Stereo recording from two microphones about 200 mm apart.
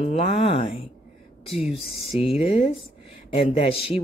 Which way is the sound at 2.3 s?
30° left (ahead or behind).